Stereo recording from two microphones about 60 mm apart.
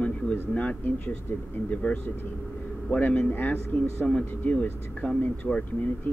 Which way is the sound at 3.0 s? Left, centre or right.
Left.